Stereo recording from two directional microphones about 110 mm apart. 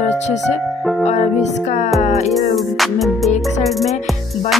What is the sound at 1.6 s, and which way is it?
Speech, 90° left.